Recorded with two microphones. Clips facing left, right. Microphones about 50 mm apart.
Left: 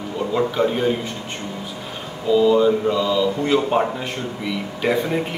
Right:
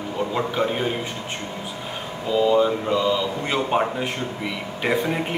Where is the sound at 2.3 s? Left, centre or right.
Centre.